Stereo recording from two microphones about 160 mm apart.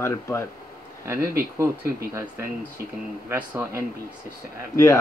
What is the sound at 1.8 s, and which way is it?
Speech, 70° right (ahead or behind).